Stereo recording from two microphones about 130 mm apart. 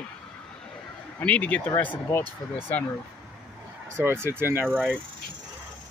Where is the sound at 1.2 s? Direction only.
10° left (ahead or behind).